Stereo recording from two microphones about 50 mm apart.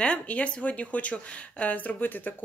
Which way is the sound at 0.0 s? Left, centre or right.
Left.